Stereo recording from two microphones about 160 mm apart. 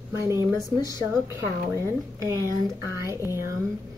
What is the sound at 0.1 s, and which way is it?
A woman's voice, 20° right (ahead or behind).